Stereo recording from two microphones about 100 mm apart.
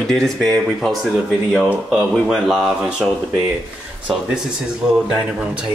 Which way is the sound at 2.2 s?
5° right (ahead or behind).